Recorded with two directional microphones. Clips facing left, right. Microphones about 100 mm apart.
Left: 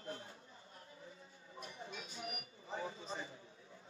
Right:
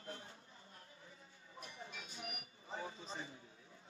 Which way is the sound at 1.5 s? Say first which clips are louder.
Left 3 dB; 30° left (ahead or behind).